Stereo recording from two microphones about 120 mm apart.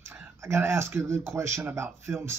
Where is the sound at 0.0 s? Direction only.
20° right (ahead or behind).